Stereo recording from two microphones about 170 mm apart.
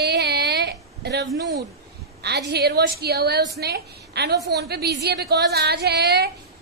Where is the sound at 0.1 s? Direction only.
75° right (ahead or behind).